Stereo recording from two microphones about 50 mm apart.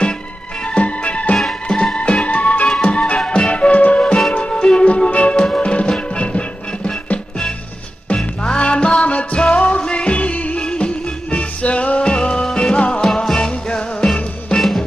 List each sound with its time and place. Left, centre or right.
0.7 s music: left
1.3 s music: centre
2.0 s music: left
8.5 s music: left
12.4 s music: centre
12.7 s music: left
13.0 s music: centre
13.5 s music: left
14.6 s music: centre